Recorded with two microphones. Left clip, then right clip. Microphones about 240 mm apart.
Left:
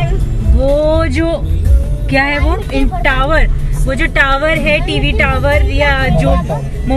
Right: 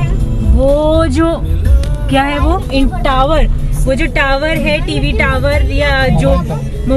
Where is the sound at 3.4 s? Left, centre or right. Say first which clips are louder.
Even; centre.